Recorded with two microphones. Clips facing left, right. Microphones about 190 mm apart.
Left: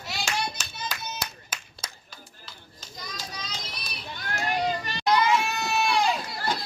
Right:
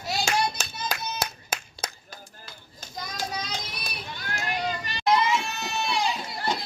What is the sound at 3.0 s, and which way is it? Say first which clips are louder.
Children playing: right 6 dB; 55° right (ahead or behind).